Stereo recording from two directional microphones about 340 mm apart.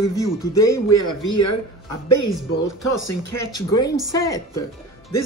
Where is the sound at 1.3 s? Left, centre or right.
Left.